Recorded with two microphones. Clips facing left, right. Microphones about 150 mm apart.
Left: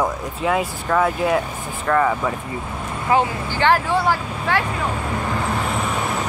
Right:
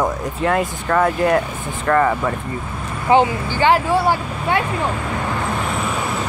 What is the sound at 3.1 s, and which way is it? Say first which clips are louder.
Speech: right 4 dB; 25° right (ahead or behind).